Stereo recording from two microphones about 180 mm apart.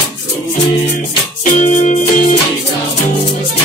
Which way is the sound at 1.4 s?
45° left (ahead or behind).